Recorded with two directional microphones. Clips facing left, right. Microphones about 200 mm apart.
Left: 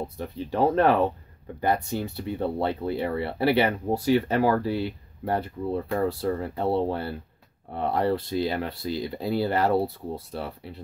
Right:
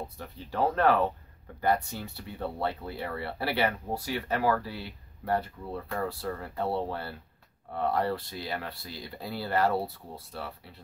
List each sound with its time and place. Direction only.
0.2 s speech: 20° left (ahead or behind)